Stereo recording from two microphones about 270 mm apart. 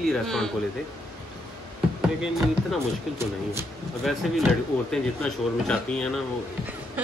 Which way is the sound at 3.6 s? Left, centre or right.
Centre.